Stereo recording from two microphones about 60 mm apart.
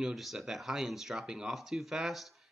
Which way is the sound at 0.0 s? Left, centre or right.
Centre.